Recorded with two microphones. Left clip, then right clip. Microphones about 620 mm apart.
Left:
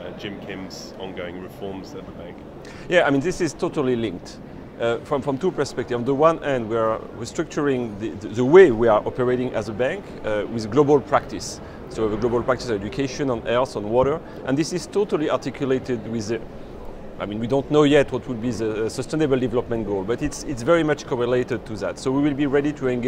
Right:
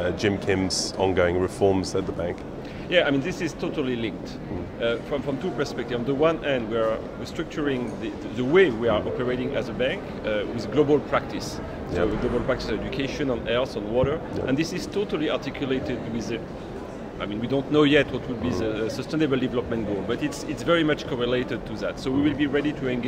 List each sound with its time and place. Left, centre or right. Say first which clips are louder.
0.2 s speech: right 9 dB; right
2.9 s a man's voice: left 3 dB; left